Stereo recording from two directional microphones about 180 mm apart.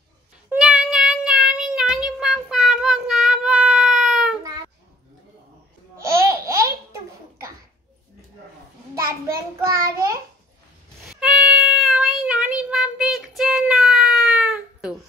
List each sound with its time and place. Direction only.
0.5 s child singing: 5° right (ahead or behind)
5.9 s babbling: 15° right (ahead or behind)
9.0 s child singing: 55° right (ahead or behind)
11.1 s child singing: 5° right (ahead or behind)